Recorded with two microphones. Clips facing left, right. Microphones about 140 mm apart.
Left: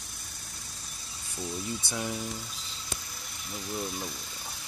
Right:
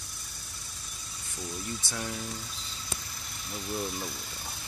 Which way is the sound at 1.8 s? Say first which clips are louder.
Left 3 dB; 15° left (ahead or behind).